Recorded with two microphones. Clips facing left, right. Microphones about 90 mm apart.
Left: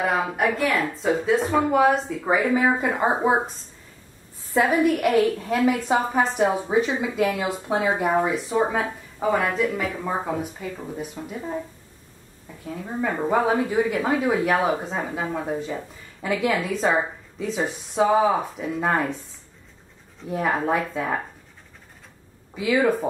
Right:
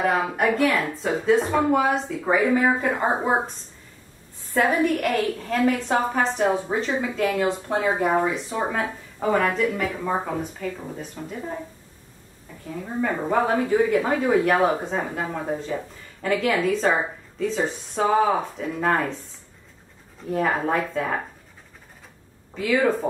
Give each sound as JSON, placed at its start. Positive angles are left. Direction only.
{"t": 0.0, "sound": "speech", "side_deg": 0}
{"t": 4.6, "sound": "a woman's voice", "side_deg": 10}
{"t": 12.6, "sound": "a woman's voice", "side_deg": 5}
{"t": 20.2, "sound": "a woman's voice", "side_deg": 5}
{"t": 22.6, "sound": "a woman's voice", "side_deg": 5}